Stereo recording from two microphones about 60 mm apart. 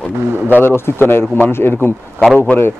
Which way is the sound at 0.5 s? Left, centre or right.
Left.